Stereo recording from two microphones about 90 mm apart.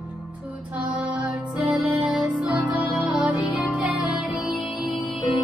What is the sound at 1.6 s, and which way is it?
Music, 15° right (ahead or behind).